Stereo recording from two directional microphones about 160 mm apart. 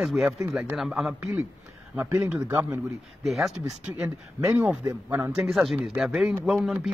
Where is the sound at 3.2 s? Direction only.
Centre (ahead or behind).